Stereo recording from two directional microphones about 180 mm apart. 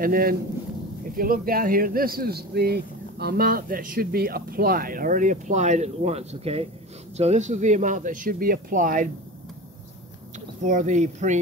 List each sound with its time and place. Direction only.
0.0 s speech: 55° right (ahead or behind)
10.6 s speech: 45° right (ahead or behind)